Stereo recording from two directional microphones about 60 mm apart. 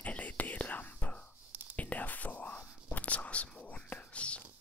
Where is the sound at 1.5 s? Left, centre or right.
Right.